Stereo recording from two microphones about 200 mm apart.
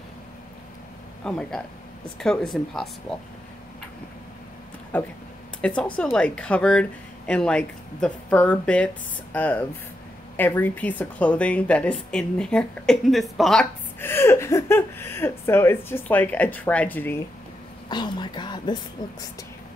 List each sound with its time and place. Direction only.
1.2 s a woman's voice: 5° left (ahead or behind)
4.9 s a woman's voice: 5° left (ahead or behind)
17.8 s speech: 20° left (ahead or behind)